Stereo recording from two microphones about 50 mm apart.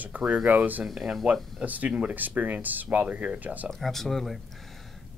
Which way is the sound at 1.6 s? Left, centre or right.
Right.